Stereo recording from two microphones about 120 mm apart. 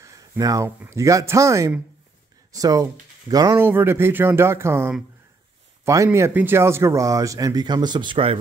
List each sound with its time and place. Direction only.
0.0 s a sound: 30° right (ahead or behind)
0.7 s speech: 20° right (ahead or behind)
3.5 s speech: 20° right (ahead or behind)
6.1 s speech: 20° right (ahead or behind); by 8.4 s 45° right (ahead or behind)